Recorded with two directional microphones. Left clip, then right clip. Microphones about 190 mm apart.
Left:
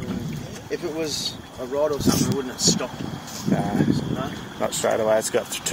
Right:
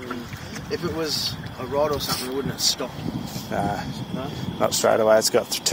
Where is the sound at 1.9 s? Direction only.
15° right (ahead or behind).